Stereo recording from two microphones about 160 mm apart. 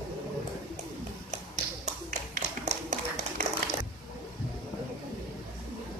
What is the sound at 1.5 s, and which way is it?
Tap, 45° right (ahead or behind).